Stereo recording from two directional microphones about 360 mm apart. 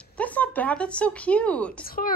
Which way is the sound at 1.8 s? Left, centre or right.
Left.